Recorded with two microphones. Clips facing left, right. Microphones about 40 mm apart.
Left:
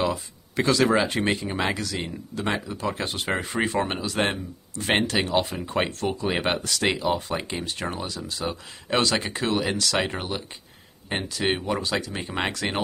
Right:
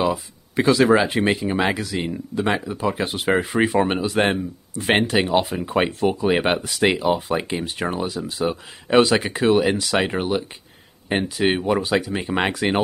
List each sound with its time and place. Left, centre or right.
0.0 s speech: centre